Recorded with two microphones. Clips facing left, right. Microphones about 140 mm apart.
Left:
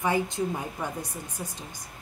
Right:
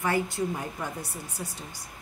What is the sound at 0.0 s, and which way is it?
A woman's voice, 20° left (ahead or behind).